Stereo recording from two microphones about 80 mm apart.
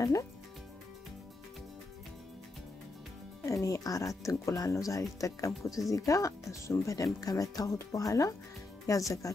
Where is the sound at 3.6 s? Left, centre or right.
Left.